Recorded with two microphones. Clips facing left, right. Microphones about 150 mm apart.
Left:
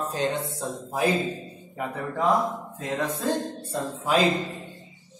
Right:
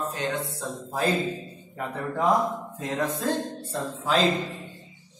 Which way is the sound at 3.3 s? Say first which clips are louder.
Left 1 dB; 10° left (ahead or behind).